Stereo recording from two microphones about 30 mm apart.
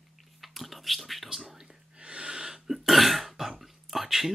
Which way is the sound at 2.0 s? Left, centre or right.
Right.